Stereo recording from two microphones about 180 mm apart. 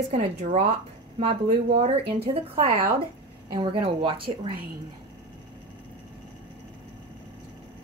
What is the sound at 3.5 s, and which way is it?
Speech, 30° right (ahead or behind).